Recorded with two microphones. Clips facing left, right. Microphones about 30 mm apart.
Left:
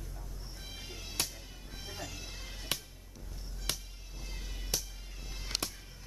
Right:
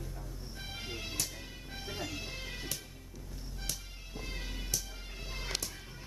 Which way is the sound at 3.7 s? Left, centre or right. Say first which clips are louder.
Left 5 dB; left.